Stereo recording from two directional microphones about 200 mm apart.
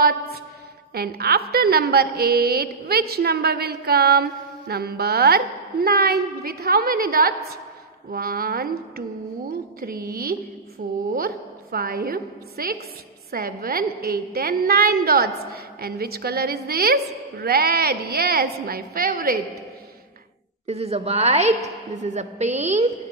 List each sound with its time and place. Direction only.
0.9 s a woman's voice: 50° right (ahead or behind)
20.6 s a woman's voice: 30° right (ahead or behind)